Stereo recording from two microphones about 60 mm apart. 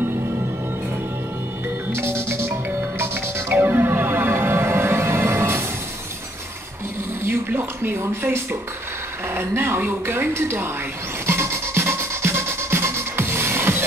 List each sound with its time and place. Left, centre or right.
1.9 s music: right
7.2 s speech: right
11.2 s music: right